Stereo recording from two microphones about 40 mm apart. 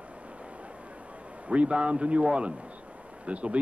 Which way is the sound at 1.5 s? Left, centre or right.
Right.